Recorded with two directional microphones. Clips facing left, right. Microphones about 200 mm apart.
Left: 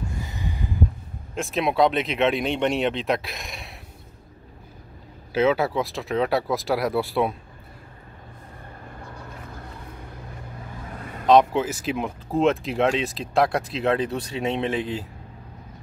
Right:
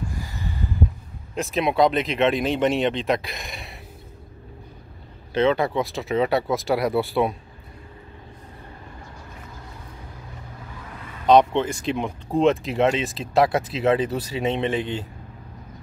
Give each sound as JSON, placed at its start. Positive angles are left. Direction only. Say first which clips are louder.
{"t": 0.2, "sound": "a sound", "louder": "even", "side_deg": 20}
{"t": 1.3, "sound": "speech", "louder": "right 1 dB", "side_deg": 0}
{"t": 5.3, "sound": "speech", "louder": "even", "side_deg": 5}
{"t": 11.2, "sound": "speech", "louder": "right 1 dB", "side_deg": 5}